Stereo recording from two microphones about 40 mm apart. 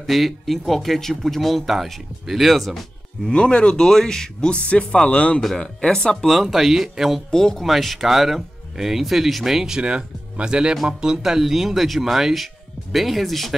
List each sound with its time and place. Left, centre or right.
0.0 s speech: centre
3.3 s speech: left
5.4 s speech: centre
6.4 s speech: centre
7.2 s speech: centre
7.6 s speech: centre
9.8 s speech: right; by 13.6 s centre